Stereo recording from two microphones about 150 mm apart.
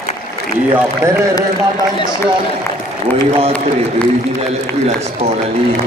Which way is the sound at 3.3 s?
40° right (ahead or behind).